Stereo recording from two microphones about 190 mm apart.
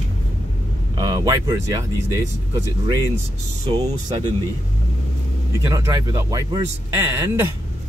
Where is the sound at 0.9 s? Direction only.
20° right (ahead or behind).